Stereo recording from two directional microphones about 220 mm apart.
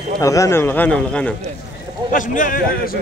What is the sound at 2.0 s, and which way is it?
Speech, 35° left (ahead or behind).